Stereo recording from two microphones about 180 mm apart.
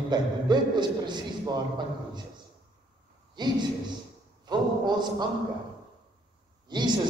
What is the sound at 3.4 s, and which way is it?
Speech, 25° right (ahead or behind).